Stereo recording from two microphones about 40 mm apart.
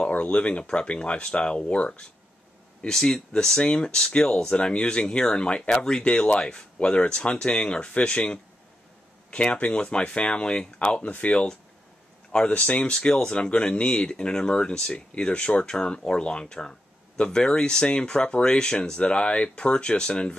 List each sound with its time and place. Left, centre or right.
0.0 s speech: left
2.9 s speech: centre
6.0 s speech: left
9.3 s speech: left
11.0 s speech: left
12.4 s speech: left